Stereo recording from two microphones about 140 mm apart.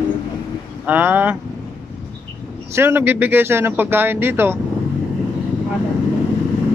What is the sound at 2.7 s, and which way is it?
Speech, 15° right (ahead or behind).